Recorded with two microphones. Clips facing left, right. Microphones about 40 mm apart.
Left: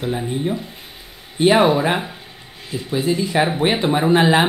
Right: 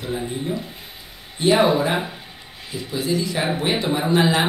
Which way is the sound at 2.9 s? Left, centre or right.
Left.